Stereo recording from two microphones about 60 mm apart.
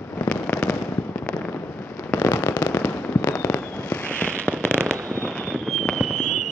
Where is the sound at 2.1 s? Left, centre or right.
Left.